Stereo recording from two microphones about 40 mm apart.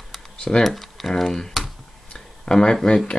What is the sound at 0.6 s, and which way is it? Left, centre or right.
Speech, centre.